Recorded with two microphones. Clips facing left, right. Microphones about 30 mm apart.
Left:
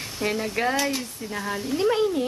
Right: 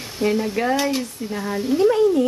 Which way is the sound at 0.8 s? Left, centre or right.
Centre.